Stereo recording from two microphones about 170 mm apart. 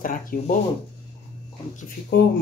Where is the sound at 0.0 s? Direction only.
55° left (ahead or behind).